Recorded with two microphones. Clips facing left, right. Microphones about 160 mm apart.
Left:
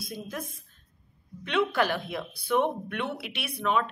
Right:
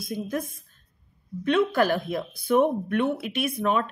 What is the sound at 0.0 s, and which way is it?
Speech, 50° right (ahead or behind).